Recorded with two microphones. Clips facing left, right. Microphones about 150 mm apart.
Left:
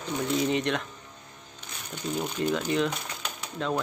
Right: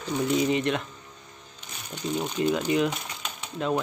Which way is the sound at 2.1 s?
5° right (ahead or behind).